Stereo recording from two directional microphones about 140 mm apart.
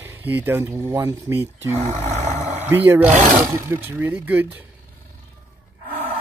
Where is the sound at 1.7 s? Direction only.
55° right (ahead or behind).